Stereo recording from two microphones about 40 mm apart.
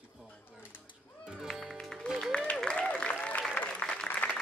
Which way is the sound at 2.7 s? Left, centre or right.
Left.